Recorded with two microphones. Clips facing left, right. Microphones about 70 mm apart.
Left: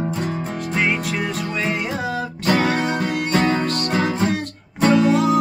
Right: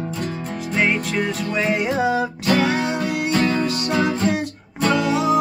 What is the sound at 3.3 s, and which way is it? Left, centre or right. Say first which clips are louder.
Music: left 1 dB; left.